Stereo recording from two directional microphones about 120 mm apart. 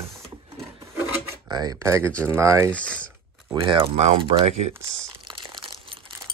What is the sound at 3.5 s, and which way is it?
Speech, 45° right (ahead or behind).